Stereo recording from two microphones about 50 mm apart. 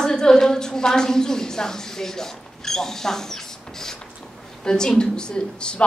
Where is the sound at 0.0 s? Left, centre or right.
Centre.